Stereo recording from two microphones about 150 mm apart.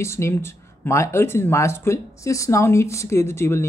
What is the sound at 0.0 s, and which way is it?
Speech, 20° left (ahead or behind).